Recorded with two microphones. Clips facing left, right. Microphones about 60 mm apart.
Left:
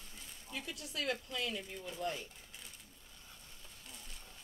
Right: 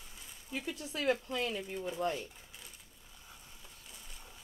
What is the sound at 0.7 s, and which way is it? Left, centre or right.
Speech, right.